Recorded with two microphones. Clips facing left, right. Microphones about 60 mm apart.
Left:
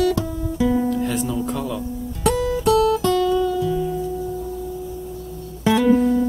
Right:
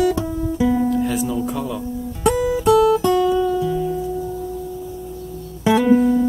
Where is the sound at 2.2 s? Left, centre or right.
Centre.